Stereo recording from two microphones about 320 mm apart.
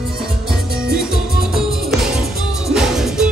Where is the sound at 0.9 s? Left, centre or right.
Centre.